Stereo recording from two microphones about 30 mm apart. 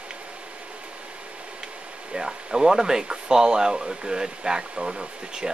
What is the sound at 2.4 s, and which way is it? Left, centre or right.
Speech, right.